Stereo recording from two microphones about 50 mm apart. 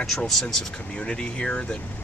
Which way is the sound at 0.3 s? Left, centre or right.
Centre.